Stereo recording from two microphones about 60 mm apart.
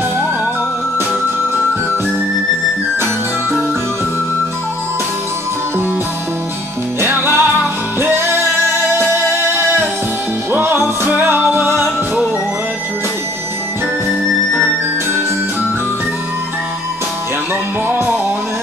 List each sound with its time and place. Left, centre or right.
7.0 s music: right
17.8 s music: right